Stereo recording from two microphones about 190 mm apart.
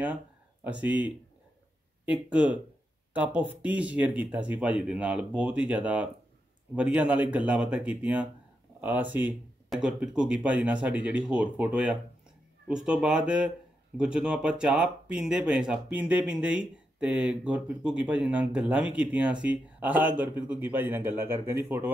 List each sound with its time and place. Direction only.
0.7 s speech: 5° right (ahead or behind)